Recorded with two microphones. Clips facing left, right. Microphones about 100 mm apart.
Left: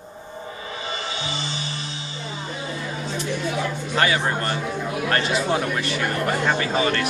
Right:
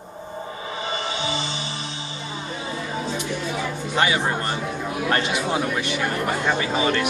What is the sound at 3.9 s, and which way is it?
Speech, 20° right (ahead or behind).